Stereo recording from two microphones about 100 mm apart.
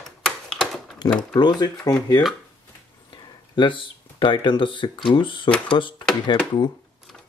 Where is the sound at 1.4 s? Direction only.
45° left (ahead or behind).